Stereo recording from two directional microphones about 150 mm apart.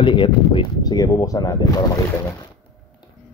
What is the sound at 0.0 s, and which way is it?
Speech, 35° left (ahead or behind).